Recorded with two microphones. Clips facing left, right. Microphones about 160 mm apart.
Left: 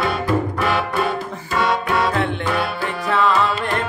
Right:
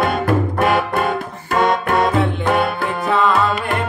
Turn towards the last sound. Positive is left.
turn(degrees=0)  # may be behind; listen again after turning